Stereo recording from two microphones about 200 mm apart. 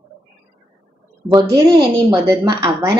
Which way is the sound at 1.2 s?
20° right (ahead or behind).